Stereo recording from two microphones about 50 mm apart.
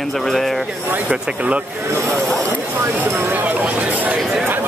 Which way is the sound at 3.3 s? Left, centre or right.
Right.